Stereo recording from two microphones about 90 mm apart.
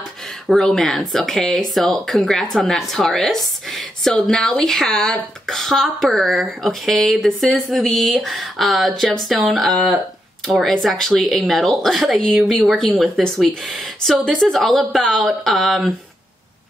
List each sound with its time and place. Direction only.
0.5 s speech: 5° left (ahead or behind)